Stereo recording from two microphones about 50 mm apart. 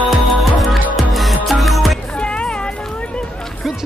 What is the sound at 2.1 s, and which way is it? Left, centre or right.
Music, left.